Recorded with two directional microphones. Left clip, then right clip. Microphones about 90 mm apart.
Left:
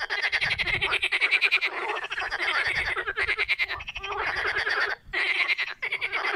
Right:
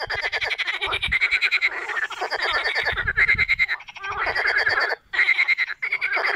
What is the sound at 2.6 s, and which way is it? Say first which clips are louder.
Frog: right 3 dB; 90° right.